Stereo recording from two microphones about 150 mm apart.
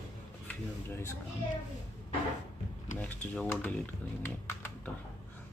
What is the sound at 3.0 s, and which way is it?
Speech, 10° left (ahead or behind).